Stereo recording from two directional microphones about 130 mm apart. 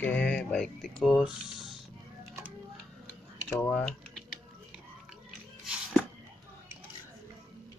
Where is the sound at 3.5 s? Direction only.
15° left (ahead or behind).